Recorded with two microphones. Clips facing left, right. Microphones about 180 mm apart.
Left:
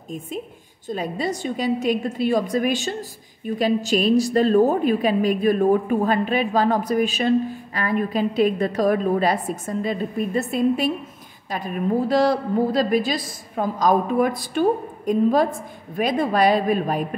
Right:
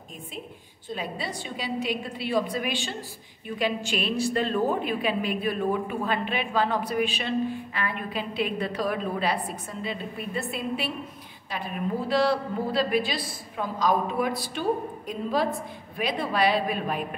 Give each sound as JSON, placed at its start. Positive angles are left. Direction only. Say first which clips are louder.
{"t": 0.8, "sound": "a woman's voice", "louder": "left 8 dB", "side_deg": 45}